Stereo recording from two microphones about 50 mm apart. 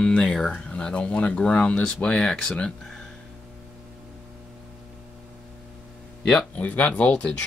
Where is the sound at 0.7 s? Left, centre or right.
Left.